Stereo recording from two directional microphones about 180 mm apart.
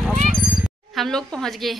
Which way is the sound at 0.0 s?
Centre (ahead or behind).